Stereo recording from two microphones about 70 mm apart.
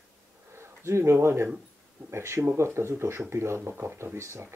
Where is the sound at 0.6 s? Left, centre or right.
Right.